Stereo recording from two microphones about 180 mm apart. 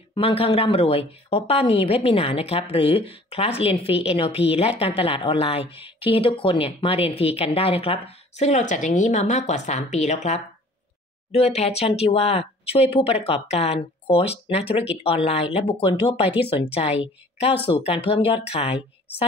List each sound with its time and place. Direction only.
0.1 s a woman's voice: 30° left (ahead or behind)